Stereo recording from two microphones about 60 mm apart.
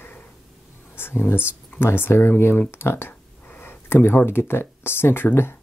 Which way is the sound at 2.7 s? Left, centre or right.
Left.